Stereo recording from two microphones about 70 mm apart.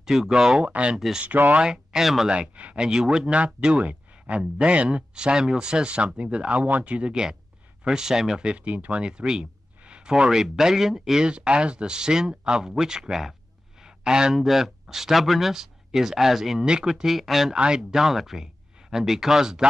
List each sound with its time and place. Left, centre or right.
0.0 s speech: centre
0.9 s speech: centre
1.2 s speech: right
1.6 s speech: centre
2.3 s speech: centre